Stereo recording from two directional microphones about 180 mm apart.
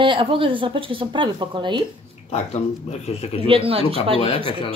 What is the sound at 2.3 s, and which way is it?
Speech, 35° left (ahead or behind).